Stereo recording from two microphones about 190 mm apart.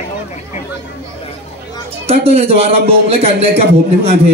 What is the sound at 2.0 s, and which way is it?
A man's voice, 30° right (ahead or behind).